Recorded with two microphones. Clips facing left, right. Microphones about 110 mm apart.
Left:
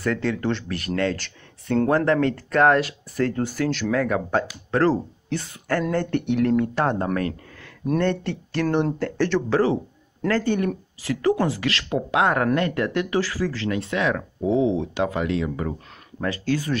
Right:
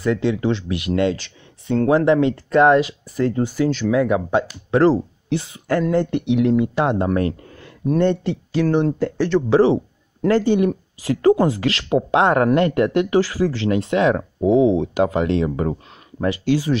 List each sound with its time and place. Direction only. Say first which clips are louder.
0.0 s speech: right 4 dB; 10° right (ahead or behind)
7.2 s speech: right 5 dB; 25° right (ahead or behind)
8.0 s speech: right 5 dB; 15° right (ahead or behind)
8.6 s speech: right 3 dB; centre (ahead or behind)
9.5 s speech: right 6 dB; 20° right (ahead or behind)
16.2 s speech: right 5 dB; 15° right (ahead or behind)